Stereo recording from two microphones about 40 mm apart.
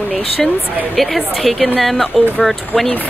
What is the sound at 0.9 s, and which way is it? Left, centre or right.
Speech, centre.